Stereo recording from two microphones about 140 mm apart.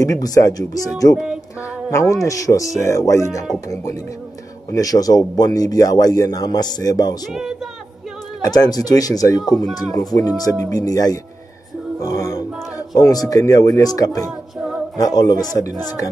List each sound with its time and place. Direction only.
0.0 s speech: 25° left (ahead or behind)
8.4 s speech: 30° left (ahead or behind)